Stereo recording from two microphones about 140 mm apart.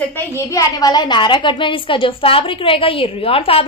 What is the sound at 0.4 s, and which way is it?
A woman's voice, 25° left (ahead or behind).